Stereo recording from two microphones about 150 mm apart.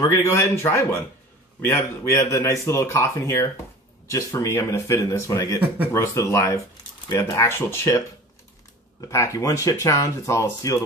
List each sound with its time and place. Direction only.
0.0 s speech: 20° left (ahead or behind)
9.1 s speech: 20° left (ahead or behind)